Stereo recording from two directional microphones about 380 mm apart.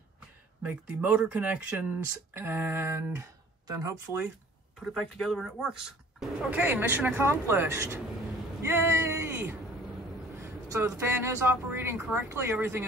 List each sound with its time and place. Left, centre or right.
0.6 s speech: centre
8.6 s a sound: centre
10.4 s a woman's voice: centre